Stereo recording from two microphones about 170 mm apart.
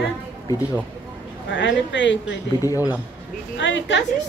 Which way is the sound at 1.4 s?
90° left.